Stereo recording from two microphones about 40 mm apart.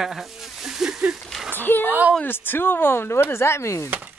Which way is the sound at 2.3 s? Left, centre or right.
Left.